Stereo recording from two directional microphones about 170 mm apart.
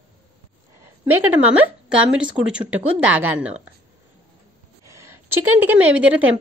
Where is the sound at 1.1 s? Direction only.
10° right (ahead or behind).